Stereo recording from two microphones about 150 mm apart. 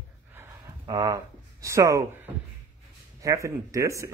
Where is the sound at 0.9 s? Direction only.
25° right (ahead or behind).